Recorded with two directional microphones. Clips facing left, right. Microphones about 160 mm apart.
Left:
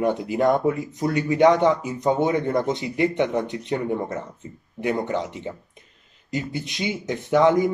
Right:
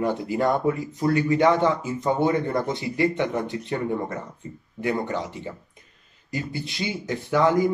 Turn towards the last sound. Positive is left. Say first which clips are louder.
# left 2 dB
turn(degrees=20)  # may be behind; listen again after turning